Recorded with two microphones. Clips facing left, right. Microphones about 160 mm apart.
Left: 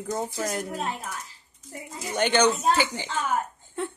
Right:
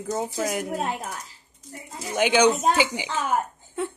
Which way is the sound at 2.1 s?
10° right (ahead or behind).